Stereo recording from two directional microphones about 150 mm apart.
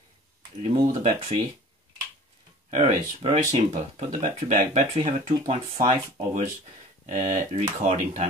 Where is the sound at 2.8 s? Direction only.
40° right (ahead or behind).